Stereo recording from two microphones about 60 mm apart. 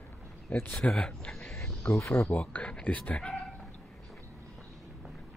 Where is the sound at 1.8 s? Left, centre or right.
Left.